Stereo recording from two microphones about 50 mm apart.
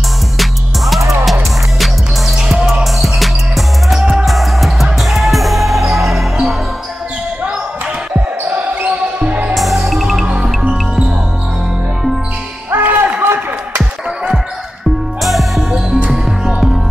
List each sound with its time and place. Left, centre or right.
0.4 s music: centre
4.8 s basketball bounce: centre
8.8 s music: right
9.6 s music: centre
10.2 s music: right
12.7 s music: right
13.2 s a sound: right
15.2 s music: centre